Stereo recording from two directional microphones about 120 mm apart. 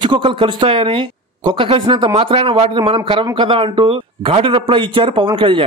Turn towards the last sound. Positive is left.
turn(degrees=-45)  # may be behind; listen again after turning